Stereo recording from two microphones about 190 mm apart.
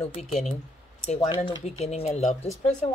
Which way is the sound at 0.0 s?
35° left (ahead or behind).